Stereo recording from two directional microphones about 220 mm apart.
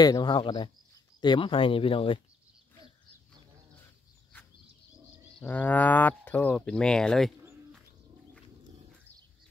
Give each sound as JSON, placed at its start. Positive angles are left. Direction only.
{"t": 0.0, "sound": "speech", "side_deg": 20}
{"t": 5.4, "sound": "speech", "side_deg": 5}